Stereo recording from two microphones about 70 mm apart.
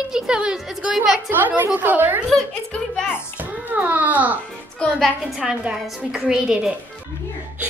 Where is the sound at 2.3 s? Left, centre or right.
Centre.